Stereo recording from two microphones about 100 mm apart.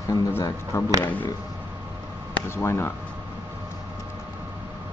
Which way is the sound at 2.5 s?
25° left (ahead or behind).